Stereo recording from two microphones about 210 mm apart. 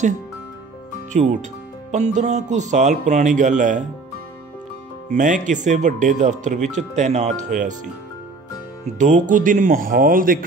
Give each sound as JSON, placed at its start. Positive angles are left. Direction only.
{"t": 1.1, "sound": "speech", "side_deg": -35}
{"t": 5.1, "sound": "speech", "side_deg": -35}
{"t": 8.8, "sound": "speech", "side_deg": -35}